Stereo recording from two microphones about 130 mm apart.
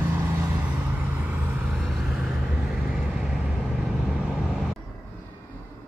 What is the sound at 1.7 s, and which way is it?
Vehicle, centre (ahead or behind).